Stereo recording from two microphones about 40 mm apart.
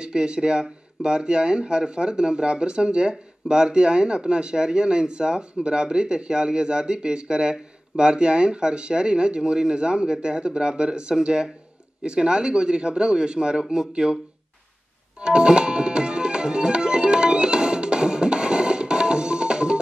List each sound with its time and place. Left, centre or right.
0.0 s speech: right
15.1 s tabla: right